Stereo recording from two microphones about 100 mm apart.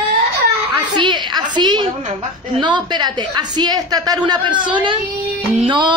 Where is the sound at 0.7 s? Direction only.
50° right (ahead or behind).